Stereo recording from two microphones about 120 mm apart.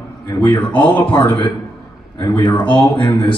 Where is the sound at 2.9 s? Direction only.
40° left (ahead or behind).